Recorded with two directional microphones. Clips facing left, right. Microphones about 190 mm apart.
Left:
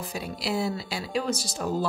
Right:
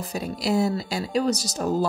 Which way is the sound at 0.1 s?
45° right (ahead or behind).